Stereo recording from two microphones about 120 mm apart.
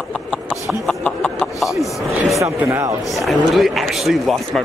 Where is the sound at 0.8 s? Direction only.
10° left (ahead or behind).